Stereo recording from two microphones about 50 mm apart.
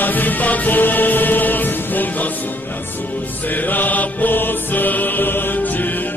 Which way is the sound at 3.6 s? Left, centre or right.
Left.